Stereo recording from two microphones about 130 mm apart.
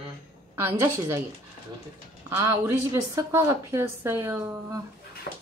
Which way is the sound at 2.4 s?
20° right (ahead or behind).